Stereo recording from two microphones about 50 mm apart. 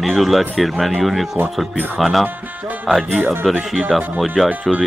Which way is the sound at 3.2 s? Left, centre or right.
Right.